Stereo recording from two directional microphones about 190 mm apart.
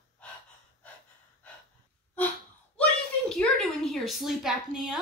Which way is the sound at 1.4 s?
5° left (ahead or behind).